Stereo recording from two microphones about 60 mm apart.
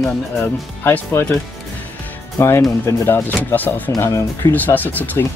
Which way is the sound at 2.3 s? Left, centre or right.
Left.